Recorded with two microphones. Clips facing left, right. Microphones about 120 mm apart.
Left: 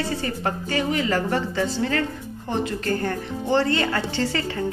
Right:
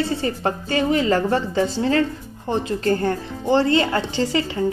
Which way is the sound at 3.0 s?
25° right (ahead or behind).